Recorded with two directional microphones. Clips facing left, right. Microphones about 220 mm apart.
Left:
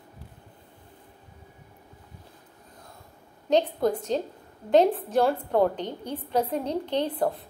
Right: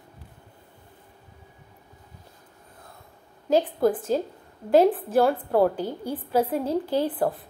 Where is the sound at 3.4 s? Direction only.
5° right (ahead or behind).